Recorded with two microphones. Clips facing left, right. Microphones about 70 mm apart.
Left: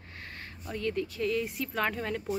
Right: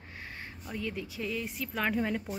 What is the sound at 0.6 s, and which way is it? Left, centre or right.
Speech, centre.